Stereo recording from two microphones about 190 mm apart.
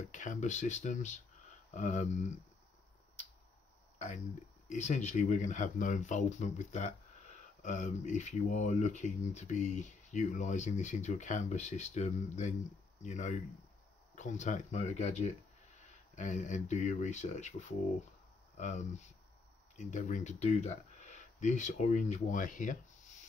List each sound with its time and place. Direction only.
0.1 s speech: 40° left (ahead or behind)
4.6 s speech: 40° left (ahead or behind)